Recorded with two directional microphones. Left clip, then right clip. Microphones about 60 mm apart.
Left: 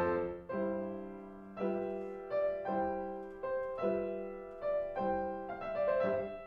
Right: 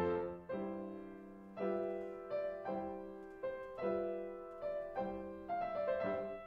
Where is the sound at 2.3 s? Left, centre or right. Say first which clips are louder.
Left 7 dB; right.